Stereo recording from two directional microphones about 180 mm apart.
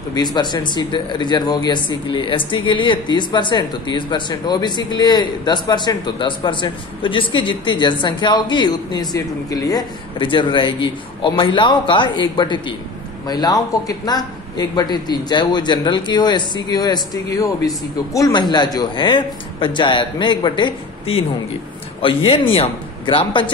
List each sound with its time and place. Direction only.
0.1 s speech: 25° left (ahead or behind)